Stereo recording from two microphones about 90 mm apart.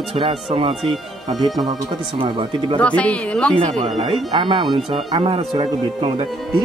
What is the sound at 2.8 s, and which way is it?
Speech, 15° left (ahead or behind).